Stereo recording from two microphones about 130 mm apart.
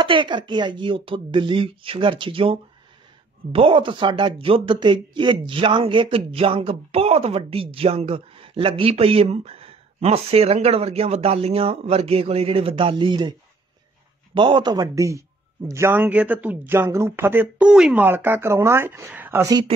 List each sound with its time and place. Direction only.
0.0 s a man's voice: 40° right (ahead or behind)
14.3 s speech: 40° right (ahead or behind); by 18.0 s 5° right (ahead or behind)
18.0 s speech: 15° right (ahead or behind)